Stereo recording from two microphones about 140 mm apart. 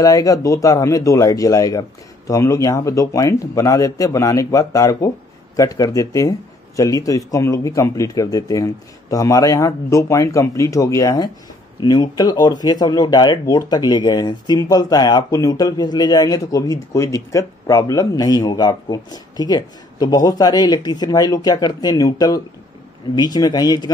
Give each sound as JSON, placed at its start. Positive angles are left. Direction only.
{"t": 0.0, "sound": "speech", "side_deg": 25}